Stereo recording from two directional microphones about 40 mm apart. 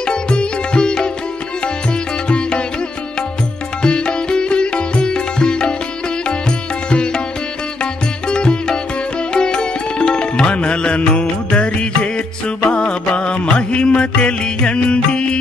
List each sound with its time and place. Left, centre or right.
0.0 s music: left
3.8 s music: left
6.9 s music: left